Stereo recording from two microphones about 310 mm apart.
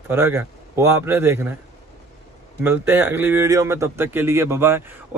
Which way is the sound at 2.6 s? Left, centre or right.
Centre.